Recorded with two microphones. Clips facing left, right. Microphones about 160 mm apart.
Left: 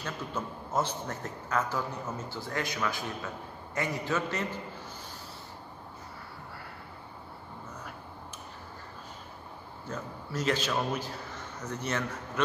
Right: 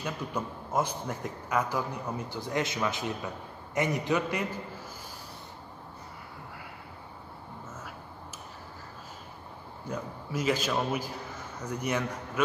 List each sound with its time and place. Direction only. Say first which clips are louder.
0.0 s a man's voice: right 2 dB; 10° right (ahead or behind)
9.8 s a man's voice: right 3 dB; 10° right (ahead or behind)